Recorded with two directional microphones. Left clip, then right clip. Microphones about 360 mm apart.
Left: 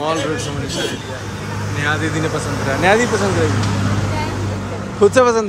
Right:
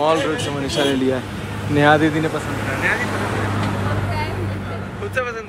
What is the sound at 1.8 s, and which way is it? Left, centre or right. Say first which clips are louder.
Speech: right 5 dB; centre.